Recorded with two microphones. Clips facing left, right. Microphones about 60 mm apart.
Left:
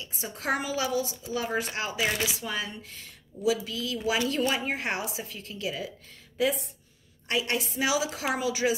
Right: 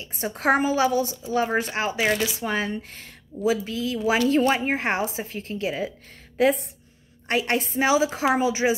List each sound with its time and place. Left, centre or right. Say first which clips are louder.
0.1 s a woman's voice: right 8 dB; right